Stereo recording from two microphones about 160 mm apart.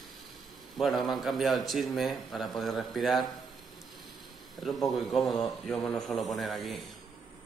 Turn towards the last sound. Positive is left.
turn(degrees=0)  # may be behind; listen again after turning